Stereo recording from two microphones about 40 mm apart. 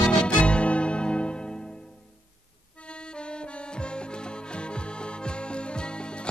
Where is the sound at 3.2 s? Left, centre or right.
Left.